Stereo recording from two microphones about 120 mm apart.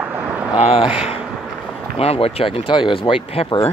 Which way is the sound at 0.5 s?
60° left (ahead or behind).